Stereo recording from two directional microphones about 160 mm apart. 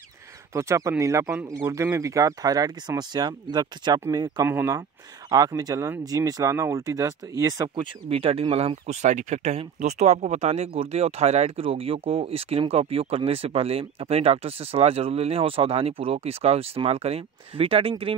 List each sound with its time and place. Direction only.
0.5 s speech: 20° right (ahead or behind); by 18.1 s 35° right (ahead or behind)